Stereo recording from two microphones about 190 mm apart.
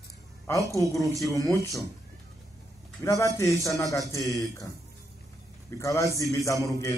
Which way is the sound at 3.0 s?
15° left (ahead or behind).